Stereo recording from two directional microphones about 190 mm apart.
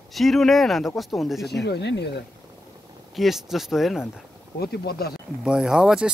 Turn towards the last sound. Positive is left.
turn(degrees=-5)  # may be behind; listen again after turning